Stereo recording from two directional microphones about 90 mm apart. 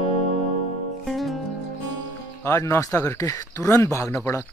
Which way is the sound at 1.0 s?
Centre (ahead or behind).